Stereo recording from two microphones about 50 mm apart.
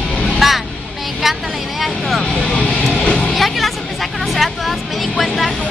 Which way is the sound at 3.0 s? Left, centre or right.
Left.